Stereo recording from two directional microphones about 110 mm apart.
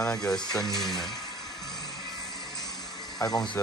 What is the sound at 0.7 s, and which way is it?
Speech, 5° left (ahead or behind).